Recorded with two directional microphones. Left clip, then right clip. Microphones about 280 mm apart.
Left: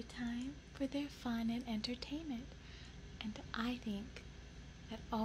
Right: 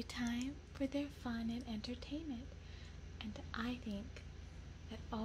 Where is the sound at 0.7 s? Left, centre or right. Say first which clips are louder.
Even; centre.